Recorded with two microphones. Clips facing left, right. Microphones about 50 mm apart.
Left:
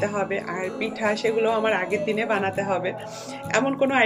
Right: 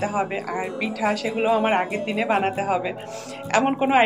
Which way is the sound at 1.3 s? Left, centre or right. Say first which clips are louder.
Right 1 dB; right.